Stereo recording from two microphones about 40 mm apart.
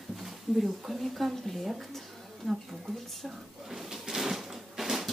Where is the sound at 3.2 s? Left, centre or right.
Centre.